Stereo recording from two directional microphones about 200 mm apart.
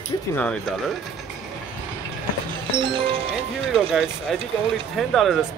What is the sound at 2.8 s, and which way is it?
Speech, 25° right (ahead or behind).